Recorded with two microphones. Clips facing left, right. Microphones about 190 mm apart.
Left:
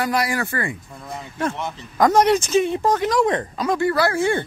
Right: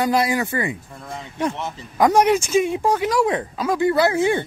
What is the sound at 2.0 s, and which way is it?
Speech, 10° right (ahead or behind).